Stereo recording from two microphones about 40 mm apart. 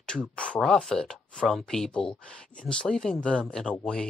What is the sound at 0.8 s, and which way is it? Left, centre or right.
Speech, centre.